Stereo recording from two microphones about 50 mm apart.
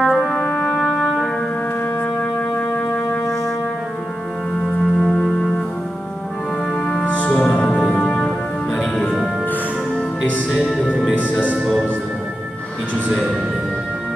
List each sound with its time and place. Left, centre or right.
0.0 s music: centre
0.4 s music: centre
0.7 s music: centre
4.6 s music: centre
7.1 s music: left
7.9 s music: centre
11.1 s music: right